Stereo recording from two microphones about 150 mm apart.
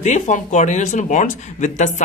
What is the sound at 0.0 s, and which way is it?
Speech, 50° left (ahead or behind).